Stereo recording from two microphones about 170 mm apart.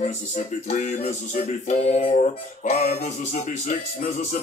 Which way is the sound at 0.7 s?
40° left (ahead or behind).